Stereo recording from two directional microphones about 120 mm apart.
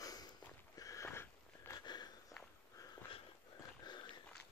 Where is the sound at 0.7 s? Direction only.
25° left (ahead or behind).